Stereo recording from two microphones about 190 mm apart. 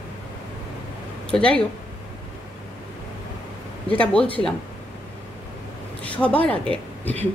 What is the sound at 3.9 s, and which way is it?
Speech, 5° left (ahead or behind).